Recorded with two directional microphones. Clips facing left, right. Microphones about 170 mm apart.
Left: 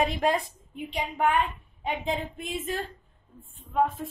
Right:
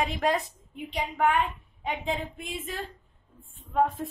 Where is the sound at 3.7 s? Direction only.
5° left (ahead or behind).